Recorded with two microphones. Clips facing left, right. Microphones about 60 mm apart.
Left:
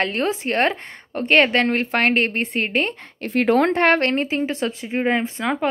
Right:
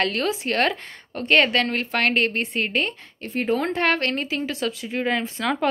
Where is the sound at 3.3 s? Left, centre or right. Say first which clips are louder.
Left 6 dB; left.